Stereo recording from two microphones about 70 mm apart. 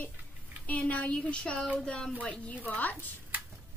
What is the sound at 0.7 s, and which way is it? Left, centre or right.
A woman's voice, left.